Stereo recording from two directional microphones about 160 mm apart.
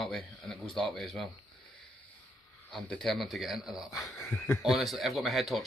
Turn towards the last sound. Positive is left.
turn(degrees=0)  # may be behind; listen again after turning